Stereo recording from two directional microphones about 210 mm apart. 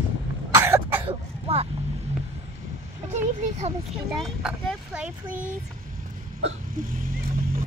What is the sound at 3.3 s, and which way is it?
Speech, 35° right (ahead or behind).